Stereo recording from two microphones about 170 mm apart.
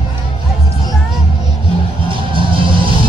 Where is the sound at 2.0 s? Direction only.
30° right (ahead or behind).